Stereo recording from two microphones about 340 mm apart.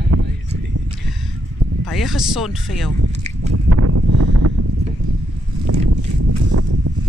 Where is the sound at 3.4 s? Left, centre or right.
Right.